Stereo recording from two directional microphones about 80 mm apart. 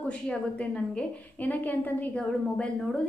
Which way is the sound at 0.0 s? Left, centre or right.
Centre.